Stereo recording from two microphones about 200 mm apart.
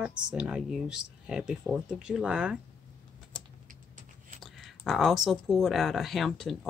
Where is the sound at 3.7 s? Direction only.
40° right (ahead or behind).